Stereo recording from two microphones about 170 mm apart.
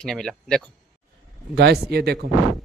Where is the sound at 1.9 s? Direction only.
70° right (ahead or behind).